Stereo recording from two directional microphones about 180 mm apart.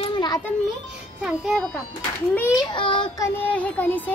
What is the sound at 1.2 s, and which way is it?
Speech, centre (ahead or behind).